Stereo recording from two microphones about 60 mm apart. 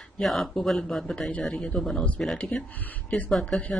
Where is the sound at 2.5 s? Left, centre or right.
Centre.